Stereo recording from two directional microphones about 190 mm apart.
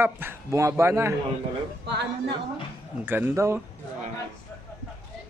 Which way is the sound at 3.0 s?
10° right (ahead or behind).